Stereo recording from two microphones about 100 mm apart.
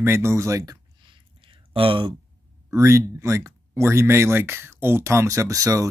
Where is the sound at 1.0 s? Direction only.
55° right (ahead or behind).